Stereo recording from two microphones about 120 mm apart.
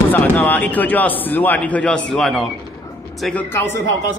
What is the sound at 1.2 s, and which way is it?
Speech, 15° left (ahead or behind).